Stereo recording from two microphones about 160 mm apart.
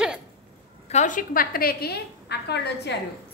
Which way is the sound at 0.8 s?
50° left (ahead or behind).